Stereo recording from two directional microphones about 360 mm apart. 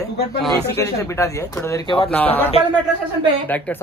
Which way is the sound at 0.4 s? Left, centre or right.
Centre.